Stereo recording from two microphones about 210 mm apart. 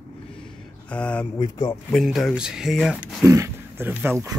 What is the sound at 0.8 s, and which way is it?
Speech, 5° left (ahead or behind).